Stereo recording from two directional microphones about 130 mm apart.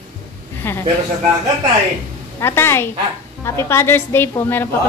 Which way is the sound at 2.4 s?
20° left (ahead or behind).